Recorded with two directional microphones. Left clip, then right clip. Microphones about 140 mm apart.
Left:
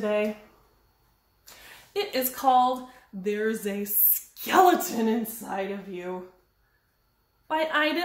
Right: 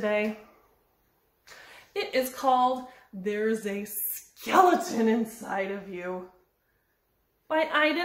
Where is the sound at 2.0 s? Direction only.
10° left (ahead or behind).